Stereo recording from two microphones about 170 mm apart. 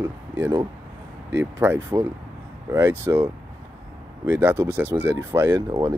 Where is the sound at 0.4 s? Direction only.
15° right (ahead or behind).